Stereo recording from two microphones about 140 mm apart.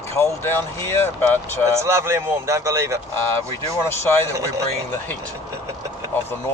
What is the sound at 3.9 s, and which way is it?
Speech, 15° left (ahead or behind).